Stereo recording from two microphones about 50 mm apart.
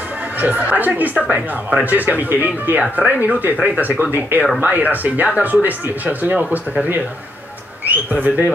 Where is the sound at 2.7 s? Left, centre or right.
Right.